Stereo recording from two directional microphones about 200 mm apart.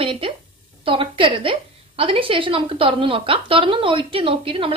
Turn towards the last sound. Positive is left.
turn(degrees=-25)  # may be behind; listen again after turning